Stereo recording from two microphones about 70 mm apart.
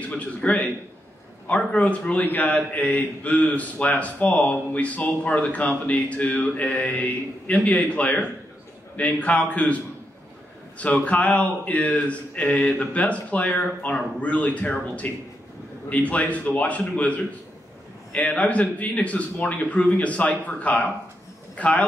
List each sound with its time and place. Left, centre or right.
0.1 s a man's voice: centre
10.8 s a man's voice: left